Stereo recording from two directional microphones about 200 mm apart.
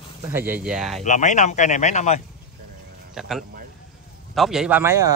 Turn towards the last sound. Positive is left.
turn(degrees=-15)  # may be behind; listen again after turning